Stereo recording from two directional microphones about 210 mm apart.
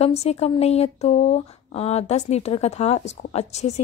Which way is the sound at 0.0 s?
30° left (ahead or behind).